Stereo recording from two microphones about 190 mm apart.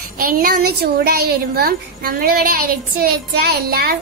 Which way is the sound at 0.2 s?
50° right (ahead or behind).